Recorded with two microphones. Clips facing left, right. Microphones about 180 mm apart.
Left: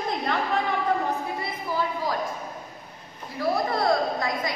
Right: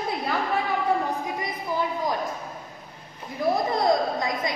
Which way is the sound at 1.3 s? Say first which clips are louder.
Right 1 dB; 20° right (ahead or behind).